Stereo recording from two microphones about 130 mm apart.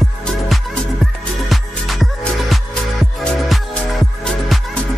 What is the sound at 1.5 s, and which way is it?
Music, centre (ahead or behind).